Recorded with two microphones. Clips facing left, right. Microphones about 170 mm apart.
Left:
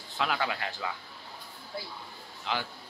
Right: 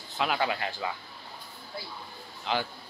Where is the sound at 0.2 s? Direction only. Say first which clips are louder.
Right 2 dB; 20° right (ahead or behind).